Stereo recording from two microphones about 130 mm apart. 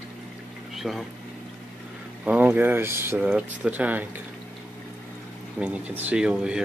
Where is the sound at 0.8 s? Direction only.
Centre (ahead or behind).